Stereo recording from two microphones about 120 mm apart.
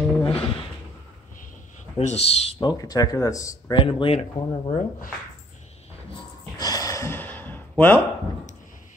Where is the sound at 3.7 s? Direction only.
45° left (ahead or behind).